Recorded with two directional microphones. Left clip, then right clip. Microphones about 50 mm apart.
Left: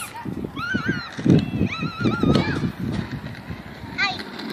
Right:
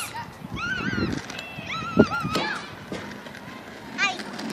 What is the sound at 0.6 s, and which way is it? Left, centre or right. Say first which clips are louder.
Cat: left 1 dB; centre.